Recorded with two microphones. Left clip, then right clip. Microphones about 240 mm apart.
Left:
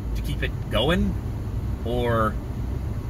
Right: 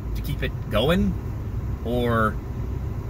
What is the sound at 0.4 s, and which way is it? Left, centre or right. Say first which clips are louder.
Speech: right 1 dB; centre.